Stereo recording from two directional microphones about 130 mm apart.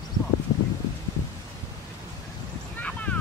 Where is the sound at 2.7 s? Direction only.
10° left (ahead or behind).